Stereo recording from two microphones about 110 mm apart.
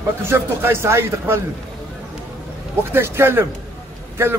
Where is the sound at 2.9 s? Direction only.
20° right (ahead or behind).